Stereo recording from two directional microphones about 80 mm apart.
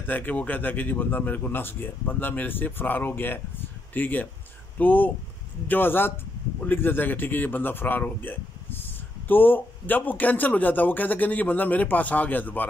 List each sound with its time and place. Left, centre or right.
0.0 s speech: left